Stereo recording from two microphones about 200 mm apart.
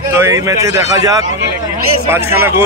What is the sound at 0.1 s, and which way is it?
A man's voice, 15° right (ahead or behind).